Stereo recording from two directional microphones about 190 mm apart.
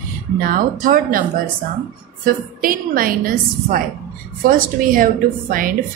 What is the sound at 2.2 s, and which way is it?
A woman's voice, 50° right (ahead or behind).